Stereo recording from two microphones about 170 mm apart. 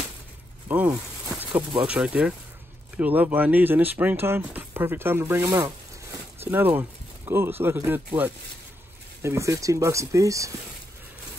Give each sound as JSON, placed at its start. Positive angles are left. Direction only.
{"t": 0.7, "sound": "a sound", "side_deg": -10}
{"t": 1.5, "sound": "speech", "side_deg": -30}
{"t": 1.9, "sound": "speech", "side_deg": -5}
{"t": 6.4, "sound": "speech", "side_deg": -10}